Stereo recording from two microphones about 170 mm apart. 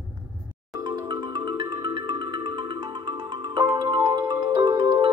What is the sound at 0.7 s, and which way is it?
Marimba, 25° right (ahead or behind).